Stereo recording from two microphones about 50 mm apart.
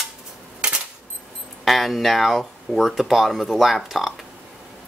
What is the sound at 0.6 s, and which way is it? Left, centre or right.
Coin, right.